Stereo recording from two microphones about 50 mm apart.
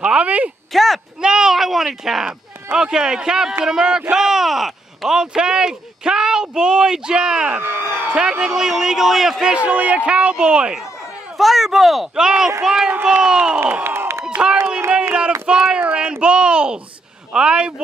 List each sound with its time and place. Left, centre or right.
0.0 s a sound: right
0.7 s speech: centre
1.2 s speech: centre
7.6 s a sound: left
8.1 s speech: centre
9.7 s speech: right
11.3 s speech: centre
12.2 s speech: centre
12.8 s speech: right
13.2 s speech: centre
13.8 s a sound: right
14.3 s speech: centre